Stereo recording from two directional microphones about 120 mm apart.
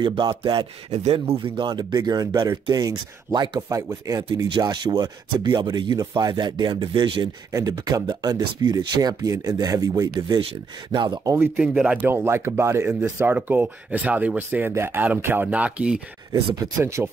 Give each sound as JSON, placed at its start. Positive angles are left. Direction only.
{"t": 0.0, "sound": "speech", "side_deg": -40}
{"t": 7.5, "sound": "speech", "side_deg": -30}
{"t": 11.3, "sound": "speech", "side_deg": -20}
{"t": 11.6, "sound": "speech", "side_deg": -10}
{"t": 12.1, "sound": "speech", "side_deg": -20}
{"t": 16.8, "sound": "speech", "side_deg": -20}